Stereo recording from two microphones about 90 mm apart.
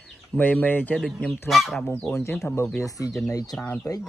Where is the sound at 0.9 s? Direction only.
5° left (ahead or behind).